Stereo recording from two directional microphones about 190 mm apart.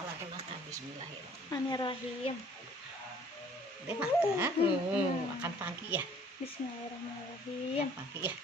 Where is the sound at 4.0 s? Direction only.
10° right (ahead or behind).